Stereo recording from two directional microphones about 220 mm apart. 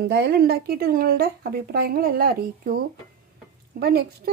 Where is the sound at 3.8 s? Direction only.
45° right (ahead or behind).